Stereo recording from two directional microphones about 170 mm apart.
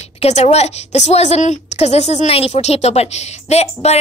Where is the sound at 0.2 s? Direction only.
40° left (ahead or behind).